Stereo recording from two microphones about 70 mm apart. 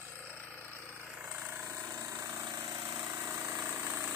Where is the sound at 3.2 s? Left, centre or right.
Right.